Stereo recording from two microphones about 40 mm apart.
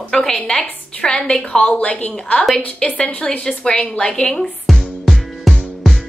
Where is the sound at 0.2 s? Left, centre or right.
Left.